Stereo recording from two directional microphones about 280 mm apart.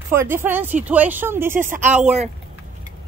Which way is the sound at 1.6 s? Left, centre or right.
Right.